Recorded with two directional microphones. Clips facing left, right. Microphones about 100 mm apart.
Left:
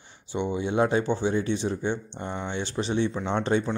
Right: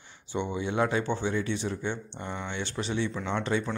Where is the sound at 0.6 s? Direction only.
25° left (ahead or behind).